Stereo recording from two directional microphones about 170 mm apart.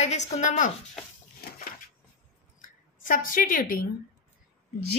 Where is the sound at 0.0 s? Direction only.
40° left (ahead or behind).